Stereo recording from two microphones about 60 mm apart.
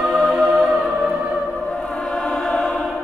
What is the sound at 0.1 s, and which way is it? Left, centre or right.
Music, centre.